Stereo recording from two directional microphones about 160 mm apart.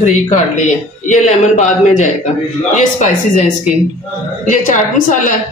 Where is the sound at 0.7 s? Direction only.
50° left (ahead or behind).